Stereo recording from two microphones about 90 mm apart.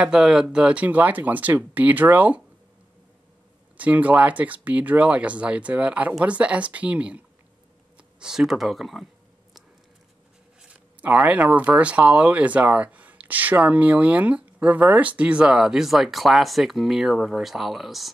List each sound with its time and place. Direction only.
0.0 s speech: 10° right (ahead or behind)
3.7 s speech: 15° right (ahead or behind)
8.2 s a sound: 5° right (ahead or behind)
10.6 s speech: 15° right (ahead or behind)